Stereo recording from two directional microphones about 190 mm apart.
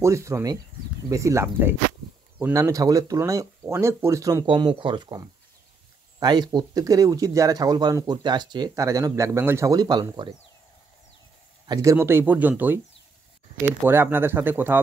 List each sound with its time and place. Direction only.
0.0 s speech: 15° right (ahead or behind)
11.6 s speech: 20° right (ahead or behind)